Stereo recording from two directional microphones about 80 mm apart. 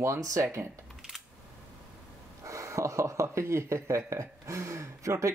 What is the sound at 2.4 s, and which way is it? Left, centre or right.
Speech, right.